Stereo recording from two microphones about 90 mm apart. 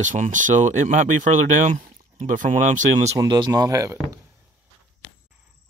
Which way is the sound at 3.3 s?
50° right (ahead or behind).